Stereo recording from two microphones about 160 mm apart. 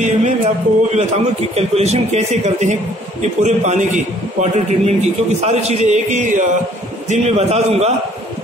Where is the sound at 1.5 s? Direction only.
40° right (ahead or behind).